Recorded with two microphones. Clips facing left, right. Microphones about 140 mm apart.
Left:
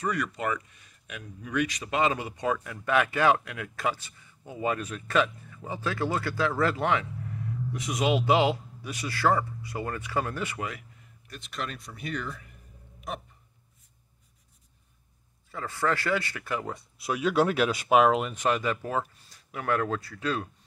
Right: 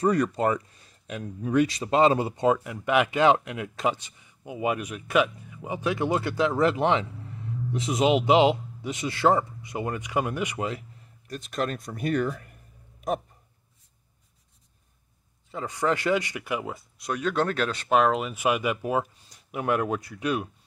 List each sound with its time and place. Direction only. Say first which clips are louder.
0.0 s speech: right 7 dB; 35° right (ahead or behind)
11.2 s speech: right 7 dB; 45° right (ahead or behind)
15.5 s speech: right 2 dB; 20° right (ahead or behind)
16.7 s speech: even; 5° left (ahead or behind); by 20.4 s 15° right (ahead or behind)